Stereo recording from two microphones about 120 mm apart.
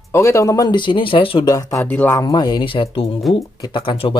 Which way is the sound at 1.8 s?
15° left (ahead or behind).